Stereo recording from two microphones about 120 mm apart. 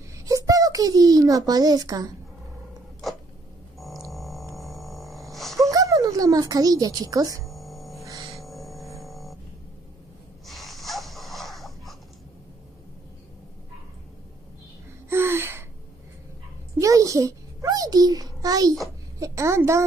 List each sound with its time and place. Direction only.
0.2 s a sound: 30° right (ahead or behind)
4.1 s music: centre (ahead or behind)
4.6 s a sound: centre (ahead or behind)
5.7 s speech: 30° right (ahead or behind)
7.4 s music: centre (ahead or behind)
10.4 s wheeze: centre (ahead or behind)
15.0 s gasp: 20° right (ahead or behind)
16.7 s babbling: 25° right (ahead or behind)
19.1 s a sound: 25° right (ahead or behind)